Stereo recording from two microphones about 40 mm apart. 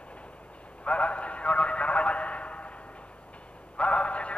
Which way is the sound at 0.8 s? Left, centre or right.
Left.